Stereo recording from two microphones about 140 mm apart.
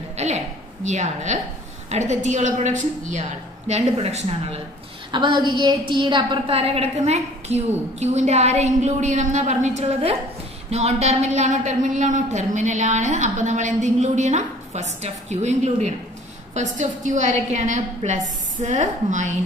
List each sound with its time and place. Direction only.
0.1 s a sound: 50° right (ahead or behind)
0.8 s a woman's voice: 55° right (ahead or behind)
5.1 s a woman's voice: 30° right (ahead or behind); by 19.3 s 60° right (ahead or behind)